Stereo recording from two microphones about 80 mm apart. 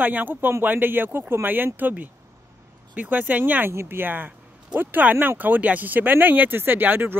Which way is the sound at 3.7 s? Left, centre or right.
Right.